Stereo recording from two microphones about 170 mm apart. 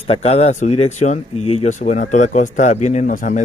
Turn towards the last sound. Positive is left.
turn(degrees=50)  # may be behind; listen again after turning